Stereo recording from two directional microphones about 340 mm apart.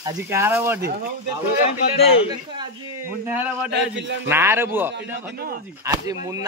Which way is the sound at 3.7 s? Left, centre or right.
Right.